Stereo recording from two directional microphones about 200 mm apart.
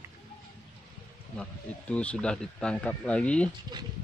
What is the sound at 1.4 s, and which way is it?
Speech, 5° left (ahead or behind).